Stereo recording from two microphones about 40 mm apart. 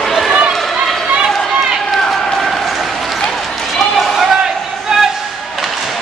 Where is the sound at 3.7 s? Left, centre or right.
Centre.